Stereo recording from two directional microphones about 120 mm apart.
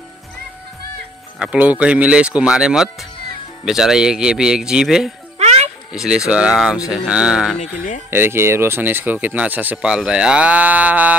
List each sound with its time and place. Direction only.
1.4 s speech: 10° right (ahead or behind)
5.4 s music: 65° right (ahead or behind)
5.9 s speech: 5° right (ahead or behind)
8.1 s speech: 20° right (ahead or behind)